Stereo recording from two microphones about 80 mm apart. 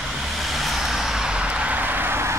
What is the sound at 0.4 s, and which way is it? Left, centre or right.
Vehicle, centre.